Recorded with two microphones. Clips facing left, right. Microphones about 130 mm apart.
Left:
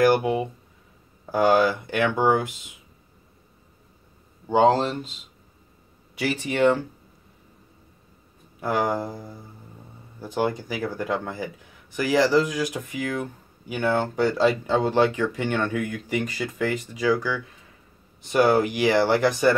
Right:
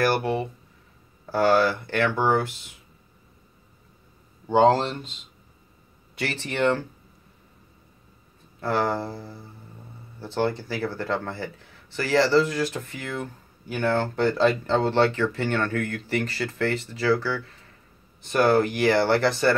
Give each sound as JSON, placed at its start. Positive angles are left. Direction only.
{"t": 0.0, "sound": "speech", "side_deg": 15}
{"t": 4.5, "sound": "speech", "side_deg": 5}
{"t": 8.5, "sound": "speech", "side_deg": 15}